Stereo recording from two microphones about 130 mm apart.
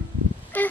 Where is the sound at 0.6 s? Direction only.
10° left (ahead or behind).